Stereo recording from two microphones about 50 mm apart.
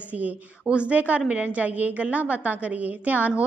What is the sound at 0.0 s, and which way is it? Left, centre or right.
A woman's voice, right.